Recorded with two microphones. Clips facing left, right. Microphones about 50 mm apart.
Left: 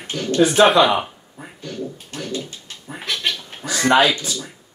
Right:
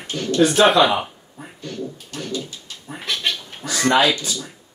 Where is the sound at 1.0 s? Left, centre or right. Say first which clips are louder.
Left 1 dB; centre.